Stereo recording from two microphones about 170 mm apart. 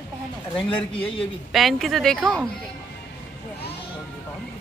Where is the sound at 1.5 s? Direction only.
Centre (ahead or behind).